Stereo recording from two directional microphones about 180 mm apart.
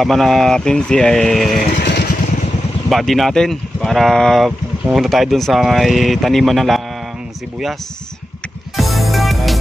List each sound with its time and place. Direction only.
0.0 s speech: centre (ahead or behind)
1.8 s vehicle: 70° left (ahead or behind)
2.9 s speech: centre (ahead or behind)
8.7 s music: centre (ahead or behind)